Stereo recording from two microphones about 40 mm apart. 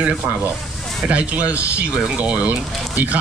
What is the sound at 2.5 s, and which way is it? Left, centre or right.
Speech, right.